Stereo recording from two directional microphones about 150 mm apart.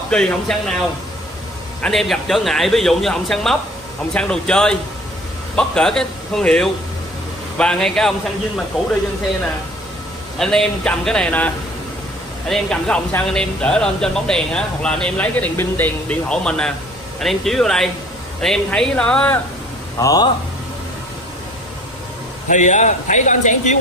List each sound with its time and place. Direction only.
0.1 s speech: 5° left (ahead or behind)
1.8 s speech: centre (ahead or behind)
10.4 s speech: 5° left (ahead or behind)
20.0 s speech: 25° left (ahead or behind)
22.5 s a man's voice: 55° left (ahead or behind)